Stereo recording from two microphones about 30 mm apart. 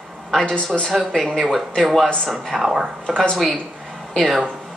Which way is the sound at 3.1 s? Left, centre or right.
Centre.